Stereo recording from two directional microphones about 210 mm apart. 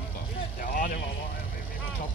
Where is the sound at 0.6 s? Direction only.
40° left (ahead or behind).